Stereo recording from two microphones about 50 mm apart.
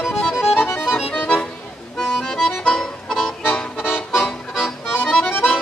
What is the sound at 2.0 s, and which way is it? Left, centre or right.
Accordion, centre.